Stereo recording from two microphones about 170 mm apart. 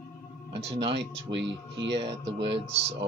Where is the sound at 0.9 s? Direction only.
90° right.